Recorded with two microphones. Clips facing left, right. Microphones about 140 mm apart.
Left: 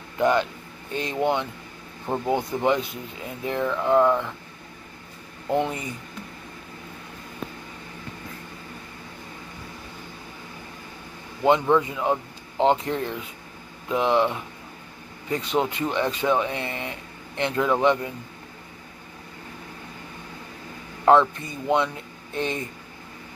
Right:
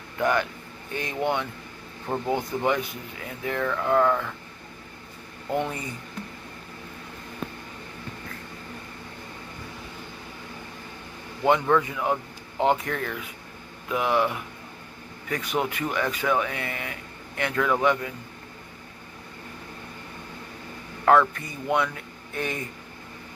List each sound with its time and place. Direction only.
0.2 s speech: 20° left (ahead or behind)
5.5 s speech: 20° left (ahead or behind)
11.4 s speech: 20° left (ahead or behind)
21.0 s speech: 25° left (ahead or behind)